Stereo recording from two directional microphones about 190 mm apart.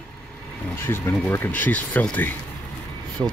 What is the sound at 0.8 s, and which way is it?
Speech, 10° left (ahead or behind).